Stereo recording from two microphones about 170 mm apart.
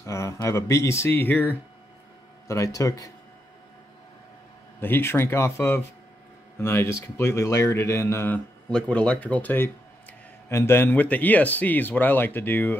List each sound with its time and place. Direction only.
0.0 s speech: 15° left (ahead or behind)
4.7 s speech: 15° left (ahead or behind)